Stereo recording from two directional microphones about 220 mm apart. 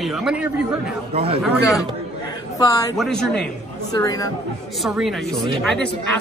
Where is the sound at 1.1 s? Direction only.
25° right (ahead or behind).